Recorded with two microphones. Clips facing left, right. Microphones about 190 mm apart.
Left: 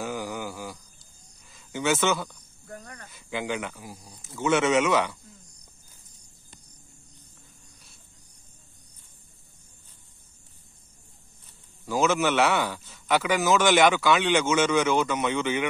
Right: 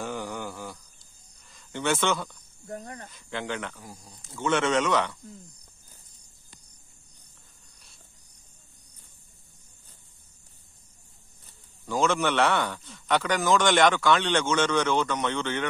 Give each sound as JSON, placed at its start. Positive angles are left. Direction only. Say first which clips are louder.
{"t": 0.0, "sound": "a sound", "louder": "left 1 dB", "side_deg": 5}
{"t": 1.5, "sound": "speech", "louder": "left 2 dB", "side_deg": 5}
{"t": 2.6, "sound": "speech", "louder": "right 5 dB", "side_deg": -25}
{"t": 3.1, "sound": "speech", "louder": "left 3 dB", "side_deg": 10}
{"t": 11.8, "sound": "a man's voice", "louder": "left 1 dB", "side_deg": 5}